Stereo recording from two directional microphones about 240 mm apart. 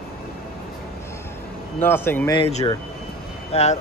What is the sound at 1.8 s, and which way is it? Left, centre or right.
Speech, centre.